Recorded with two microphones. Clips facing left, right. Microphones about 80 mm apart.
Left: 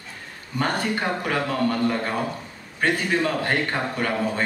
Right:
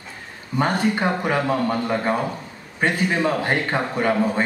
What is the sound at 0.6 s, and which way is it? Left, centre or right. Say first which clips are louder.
A man's voice: right 4 dB; centre.